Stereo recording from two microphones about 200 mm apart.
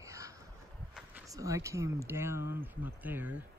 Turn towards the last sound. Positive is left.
turn(degrees=-10)  # may be behind; listen again after turning